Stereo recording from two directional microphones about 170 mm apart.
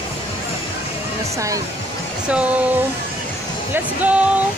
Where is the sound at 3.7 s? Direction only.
10° right (ahead or behind).